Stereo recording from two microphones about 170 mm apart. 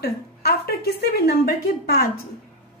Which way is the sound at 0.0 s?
65° left (ahead or behind).